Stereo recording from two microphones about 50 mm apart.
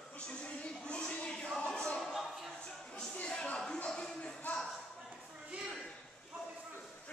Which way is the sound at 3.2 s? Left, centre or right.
Centre.